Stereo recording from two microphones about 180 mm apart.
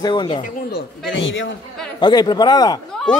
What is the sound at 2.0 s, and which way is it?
Speech, 25° left (ahead or behind).